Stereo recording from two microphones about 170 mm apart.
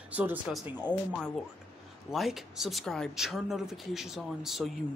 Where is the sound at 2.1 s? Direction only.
Centre (ahead or behind).